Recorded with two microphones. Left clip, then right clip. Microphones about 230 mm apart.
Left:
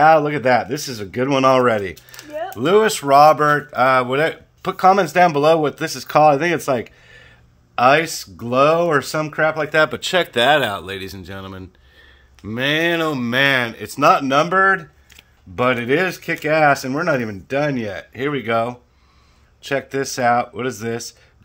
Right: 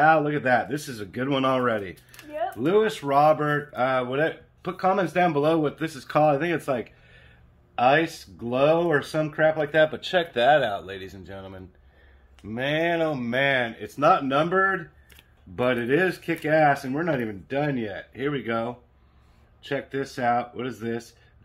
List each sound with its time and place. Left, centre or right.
0.0 s speech: left